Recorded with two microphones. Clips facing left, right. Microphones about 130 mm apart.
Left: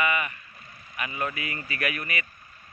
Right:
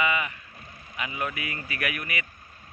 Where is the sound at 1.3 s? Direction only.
90° right.